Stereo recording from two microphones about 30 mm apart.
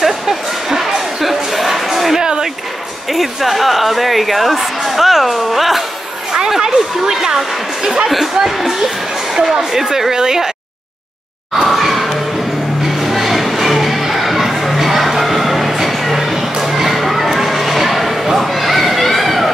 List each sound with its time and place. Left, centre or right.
0.0 s music: centre
2.1 s a sound: right
3.1 s speech: centre
6.6 s speech: centre
9.3 s speech: centre
11.6 s music: centre
18.4 s a sound: centre